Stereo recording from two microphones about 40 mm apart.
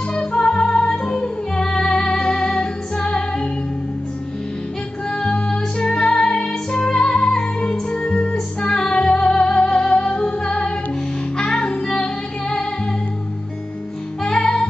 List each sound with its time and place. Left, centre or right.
0.1 s music: left
5.1 s music: left
14.2 s music: centre